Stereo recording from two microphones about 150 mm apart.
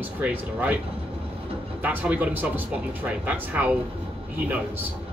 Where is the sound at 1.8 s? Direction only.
10° right (ahead or behind).